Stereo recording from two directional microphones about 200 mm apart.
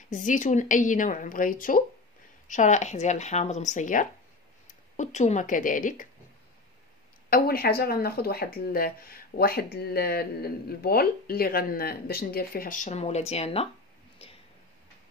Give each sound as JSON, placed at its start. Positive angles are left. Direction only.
{"t": 0.1, "sound": "a woman's voice", "side_deg": 40}
{"t": 7.2, "sound": "speech", "side_deg": 50}